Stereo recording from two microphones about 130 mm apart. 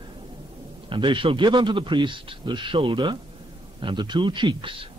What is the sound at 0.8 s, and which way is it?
A man's voice, 40° right (ahead or behind).